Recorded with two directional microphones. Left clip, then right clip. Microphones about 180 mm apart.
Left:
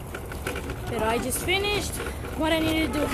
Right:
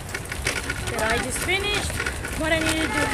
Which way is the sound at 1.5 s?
25° left (ahead or behind).